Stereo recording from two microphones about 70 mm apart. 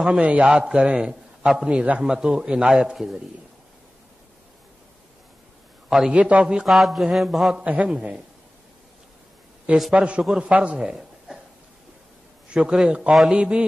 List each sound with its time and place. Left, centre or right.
0.0 s a man's voice: centre
5.9 s a man's voice: centre
6.1 s a man's voice: centre
6.4 s a sound: centre
7.6 s a man's voice: centre
9.9 s a man's voice: centre
10.2 s a sound: centre
10.5 s a man's voice: centre
12.4 s a man's voice: centre